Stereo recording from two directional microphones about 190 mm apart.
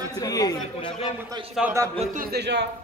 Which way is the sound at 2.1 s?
55° right (ahead or behind).